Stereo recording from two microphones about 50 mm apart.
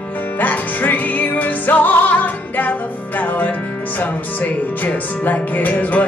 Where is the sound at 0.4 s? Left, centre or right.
Left.